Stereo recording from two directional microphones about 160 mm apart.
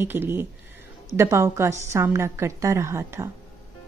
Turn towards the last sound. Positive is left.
turn(degrees=-15)  # may be behind; listen again after turning